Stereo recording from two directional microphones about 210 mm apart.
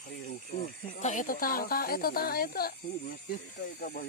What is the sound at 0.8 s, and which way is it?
Speech, 35° left (ahead or behind).